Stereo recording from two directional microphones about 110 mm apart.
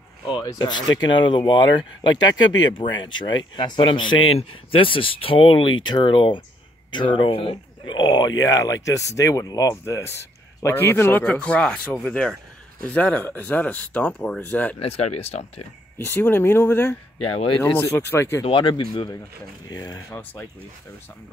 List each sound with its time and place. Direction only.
0.3 s speech: 35° left (ahead or behind); by 14.8 s 15° left (ahead or behind)
14.8 s speech: 65° left (ahead or behind)
16.0 s speech: 20° left (ahead or behind)
18.4 s speech: 45° left (ahead or behind)
20.1 s speech: 15° left (ahead or behind)